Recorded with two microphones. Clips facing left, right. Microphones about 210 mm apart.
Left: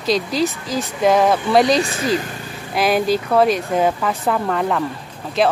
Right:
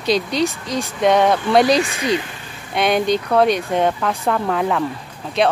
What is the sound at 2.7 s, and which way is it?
Speech, 5° left (ahead or behind).